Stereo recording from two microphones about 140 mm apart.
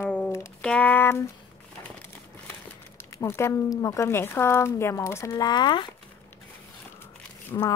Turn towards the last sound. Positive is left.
turn(degrees=25)  # may be behind; listen again after turning